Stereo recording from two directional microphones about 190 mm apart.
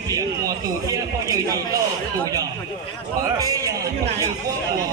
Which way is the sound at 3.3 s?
20° right (ahead or behind).